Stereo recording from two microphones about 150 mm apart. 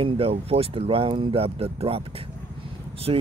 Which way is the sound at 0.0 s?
40° right (ahead or behind).